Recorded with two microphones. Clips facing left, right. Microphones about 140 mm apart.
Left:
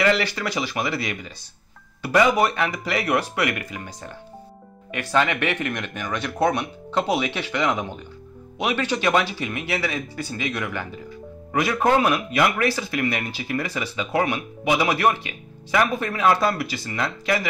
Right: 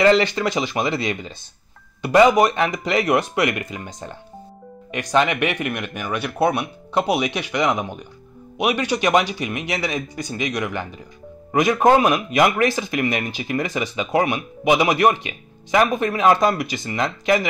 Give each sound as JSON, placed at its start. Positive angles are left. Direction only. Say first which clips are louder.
{"t": 0.0, "sound": "speech", "louder": "right 5 dB", "side_deg": -25}